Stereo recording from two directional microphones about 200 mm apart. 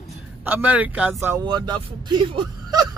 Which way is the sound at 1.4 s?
20° right (ahead or behind).